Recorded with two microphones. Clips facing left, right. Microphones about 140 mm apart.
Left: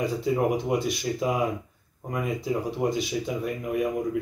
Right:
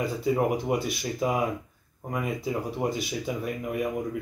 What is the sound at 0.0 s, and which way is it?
Speech, centre (ahead or behind).